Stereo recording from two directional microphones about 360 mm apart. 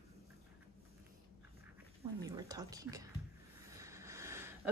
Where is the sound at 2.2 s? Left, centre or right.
Centre.